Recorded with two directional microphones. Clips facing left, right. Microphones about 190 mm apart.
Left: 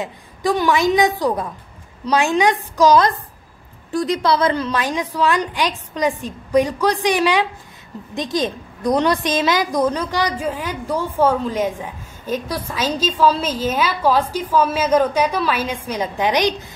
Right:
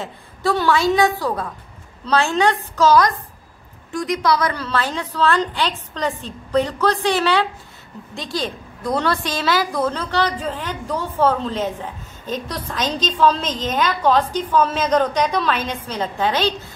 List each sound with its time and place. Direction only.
0.0 s a woman's voice: 15° left (ahead or behind)
3.9 s a woman's voice: 30° left (ahead or behind); by 16.5 s 15° left (ahead or behind)